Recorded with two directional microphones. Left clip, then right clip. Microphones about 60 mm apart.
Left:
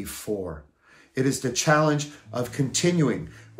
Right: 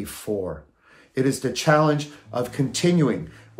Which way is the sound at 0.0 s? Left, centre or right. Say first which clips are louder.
Right 3 dB; right.